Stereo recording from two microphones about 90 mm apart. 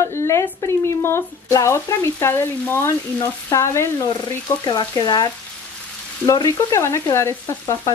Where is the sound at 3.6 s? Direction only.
30° left (ahead or behind).